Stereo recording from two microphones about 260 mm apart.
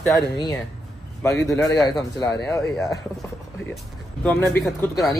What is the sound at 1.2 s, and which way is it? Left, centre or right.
A man's voice, centre.